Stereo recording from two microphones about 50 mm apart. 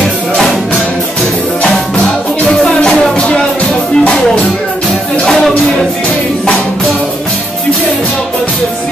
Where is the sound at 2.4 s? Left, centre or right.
Centre.